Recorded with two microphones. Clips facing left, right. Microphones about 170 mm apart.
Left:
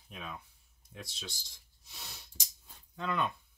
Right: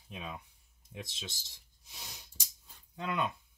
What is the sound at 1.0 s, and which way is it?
Speech, 20° right (ahead or behind).